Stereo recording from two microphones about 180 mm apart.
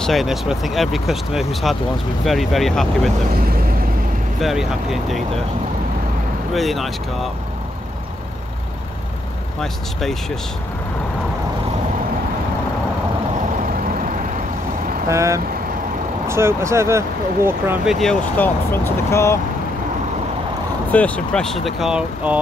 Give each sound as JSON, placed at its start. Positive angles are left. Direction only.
{"t": 0.0, "sound": "speech", "side_deg": 0}
{"t": 4.4, "sound": "speech", "side_deg": 0}
{"t": 6.5, "sound": "speech", "side_deg": 0}
{"t": 9.6, "sound": "speech", "side_deg": 0}
{"t": 15.0, "sound": "speech", "side_deg": -15}
{"t": 18.0, "sound": "speech", "side_deg": 10}
{"t": 20.9, "sound": "speech", "side_deg": 5}